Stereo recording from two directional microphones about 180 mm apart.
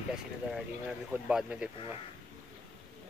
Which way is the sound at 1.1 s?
5° right (ahead or behind).